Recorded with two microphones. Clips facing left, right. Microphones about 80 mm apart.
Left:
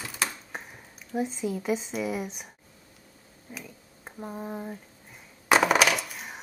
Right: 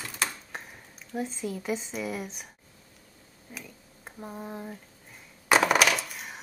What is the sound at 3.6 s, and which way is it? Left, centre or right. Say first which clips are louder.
Speech: even; centre.